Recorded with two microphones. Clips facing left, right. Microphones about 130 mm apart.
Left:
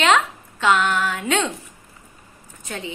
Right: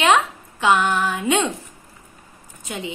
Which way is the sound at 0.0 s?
15° right (ahead or behind).